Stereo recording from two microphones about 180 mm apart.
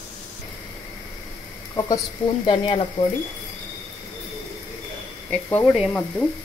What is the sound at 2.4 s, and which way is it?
Speech, 30° left (ahead or behind).